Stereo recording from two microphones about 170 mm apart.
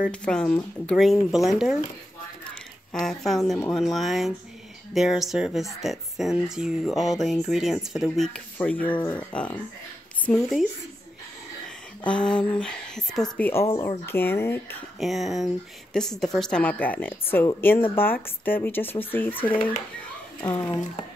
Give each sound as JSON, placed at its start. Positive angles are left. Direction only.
{"t": 0.1, "sound": "speech", "side_deg": 5}
{"t": 2.9, "sound": "speech", "side_deg": 0}
{"t": 12.1, "sound": "speech", "side_deg": 5}
{"t": 13.7, "sound": "speech", "side_deg": 15}
{"t": 15.0, "sound": "speech", "side_deg": 0}